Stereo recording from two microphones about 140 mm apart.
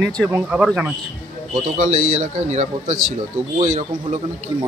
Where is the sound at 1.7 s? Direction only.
60° right (ahead or behind).